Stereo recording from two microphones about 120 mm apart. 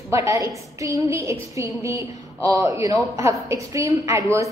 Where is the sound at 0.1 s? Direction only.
25° right (ahead or behind).